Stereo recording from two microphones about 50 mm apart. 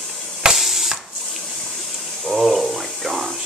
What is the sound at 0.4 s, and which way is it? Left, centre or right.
Water, centre.